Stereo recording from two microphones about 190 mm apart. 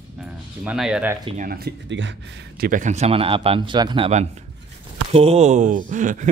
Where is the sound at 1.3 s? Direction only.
50° right (ahead or behind).